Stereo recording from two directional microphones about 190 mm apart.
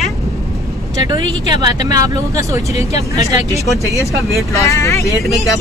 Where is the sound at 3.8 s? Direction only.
15° left (ahead or behind).